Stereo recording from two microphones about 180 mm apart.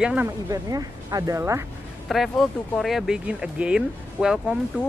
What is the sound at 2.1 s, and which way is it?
Speech, centre (ahead or behind).